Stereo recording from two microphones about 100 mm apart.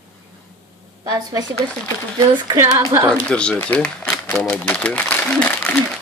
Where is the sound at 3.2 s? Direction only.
10° left (ahead or behind).